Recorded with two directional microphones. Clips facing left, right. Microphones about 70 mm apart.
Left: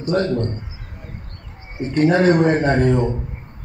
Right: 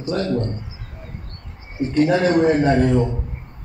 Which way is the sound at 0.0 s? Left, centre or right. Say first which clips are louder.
Left 4 dB; left.